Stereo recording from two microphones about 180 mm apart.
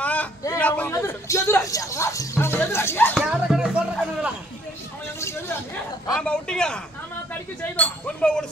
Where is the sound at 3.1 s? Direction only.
5° right (ahead or behind).